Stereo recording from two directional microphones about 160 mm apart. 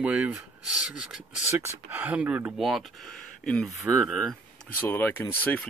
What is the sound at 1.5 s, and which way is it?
Speech, 15° right (ahead or behind).